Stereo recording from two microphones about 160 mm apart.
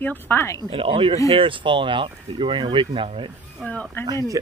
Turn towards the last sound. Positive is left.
turn(degrees=-20)  # may be behind; listen again after turning